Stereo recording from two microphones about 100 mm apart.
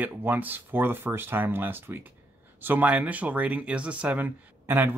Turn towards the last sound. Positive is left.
turn(degrees=-20)  # may be behind; listen again after turning